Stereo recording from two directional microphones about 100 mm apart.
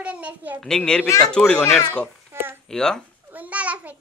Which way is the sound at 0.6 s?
5° left (ahead or behind).